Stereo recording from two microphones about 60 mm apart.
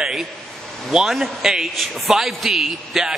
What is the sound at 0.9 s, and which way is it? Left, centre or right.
A man's voice, centre.